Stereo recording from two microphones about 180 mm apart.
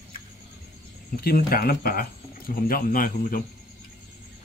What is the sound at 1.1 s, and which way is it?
Speech, 55° left (ahead or behind).